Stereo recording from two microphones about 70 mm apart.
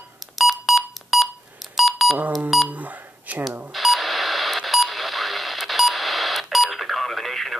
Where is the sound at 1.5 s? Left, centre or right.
Centre.